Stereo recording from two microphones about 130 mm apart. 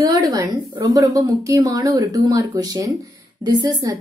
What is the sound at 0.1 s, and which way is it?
Speech, 30° right (ahead or behind).